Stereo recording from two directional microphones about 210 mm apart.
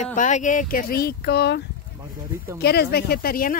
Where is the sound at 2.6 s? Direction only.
50° left (ahead or behind).